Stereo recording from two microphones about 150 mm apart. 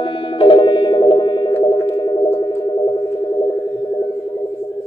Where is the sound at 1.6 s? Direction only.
35° left (ahead or behind).